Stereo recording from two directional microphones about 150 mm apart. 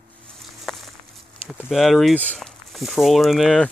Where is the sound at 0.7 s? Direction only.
5° right (ahead or behind).